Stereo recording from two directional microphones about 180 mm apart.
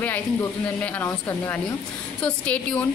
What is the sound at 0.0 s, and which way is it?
A woman's voice, 10° left (ahead or behind).